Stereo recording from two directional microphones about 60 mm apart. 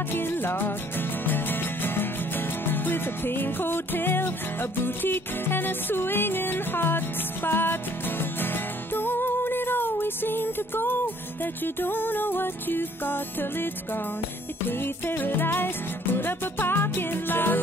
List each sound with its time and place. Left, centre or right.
0.1 s music: left
8.9 s music: left
15.0 s music: left